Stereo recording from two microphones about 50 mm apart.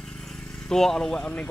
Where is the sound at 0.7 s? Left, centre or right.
Centre.